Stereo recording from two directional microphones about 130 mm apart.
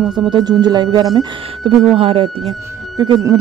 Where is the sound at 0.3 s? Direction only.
30° right (ahead or behind).